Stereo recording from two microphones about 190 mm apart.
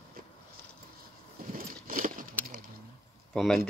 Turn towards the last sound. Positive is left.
turn(degrees=0)  # may be behind; listen again after turning